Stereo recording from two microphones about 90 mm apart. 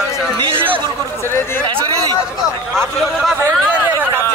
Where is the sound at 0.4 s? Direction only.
70° right (ahead or behind).